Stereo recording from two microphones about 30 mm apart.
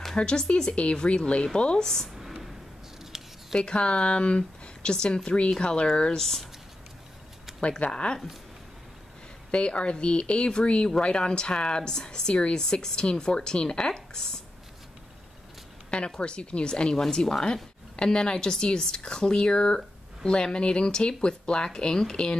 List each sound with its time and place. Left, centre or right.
0.1 s speech: left
3.5 s a woman's voice: left
6.1 s speech: centre
7.9 s a woman's voice: left
9.5 s a woman's voice: left
16.2 s speech: left
16.9 s a woman's voice: left